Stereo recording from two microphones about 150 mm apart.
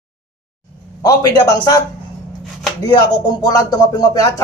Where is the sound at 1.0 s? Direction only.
25° left (ahead or behind).